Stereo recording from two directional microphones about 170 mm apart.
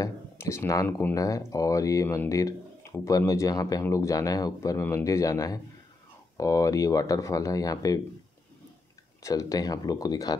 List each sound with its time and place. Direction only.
0.0 s speech: 15° left (ahead or behind)
9.2 s speech: 20° left (ahead or behind)